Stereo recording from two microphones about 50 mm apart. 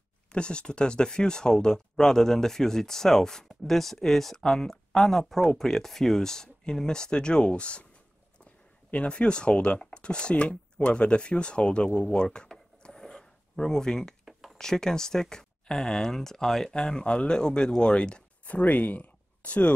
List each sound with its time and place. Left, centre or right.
0.3 s speech: centre
8.9 s speech: left
18.4 s speech: left